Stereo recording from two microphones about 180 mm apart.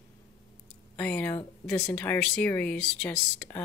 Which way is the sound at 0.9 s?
10° left (ahead or behind).